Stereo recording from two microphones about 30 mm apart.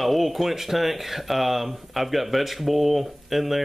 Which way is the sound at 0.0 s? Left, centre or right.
Centre.